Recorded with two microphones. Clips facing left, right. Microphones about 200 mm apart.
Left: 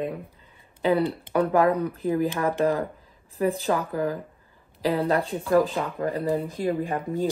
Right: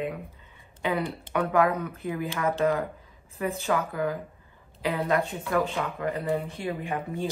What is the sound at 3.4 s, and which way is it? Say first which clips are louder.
Speech: left 3 dB; 35° left (ahead or behind).